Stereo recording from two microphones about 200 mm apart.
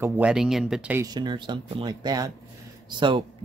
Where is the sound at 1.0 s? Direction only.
20° right (ahead or behind).